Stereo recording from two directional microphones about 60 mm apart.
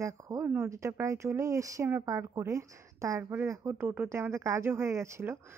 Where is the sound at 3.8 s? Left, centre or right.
Right.